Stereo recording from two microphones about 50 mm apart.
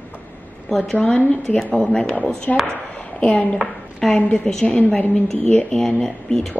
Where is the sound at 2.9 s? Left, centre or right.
Left.